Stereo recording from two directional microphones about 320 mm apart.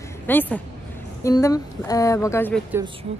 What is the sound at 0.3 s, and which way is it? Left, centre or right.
Speech, centre.